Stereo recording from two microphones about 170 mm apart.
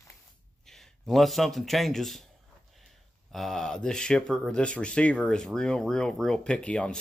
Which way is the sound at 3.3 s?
Centre (ahead or behind).